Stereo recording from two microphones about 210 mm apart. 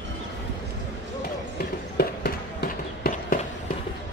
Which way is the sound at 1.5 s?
45° left (ahead or behind).